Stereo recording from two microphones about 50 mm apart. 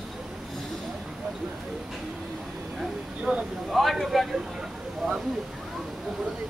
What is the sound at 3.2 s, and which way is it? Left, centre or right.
Speech, right.